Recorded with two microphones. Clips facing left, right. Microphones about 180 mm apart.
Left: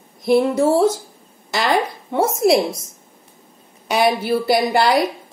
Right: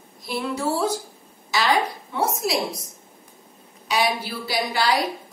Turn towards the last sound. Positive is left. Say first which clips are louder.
# left 7 dB
turn(degrees=55)  # may be behind; listen again after turning